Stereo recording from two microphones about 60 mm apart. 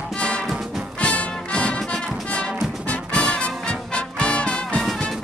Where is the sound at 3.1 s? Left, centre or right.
Centre.